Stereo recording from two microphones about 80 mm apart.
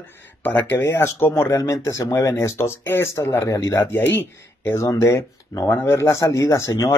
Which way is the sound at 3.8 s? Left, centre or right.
Left.